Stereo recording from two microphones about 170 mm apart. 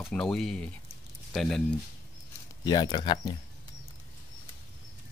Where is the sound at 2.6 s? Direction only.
25° left (ahead or behind).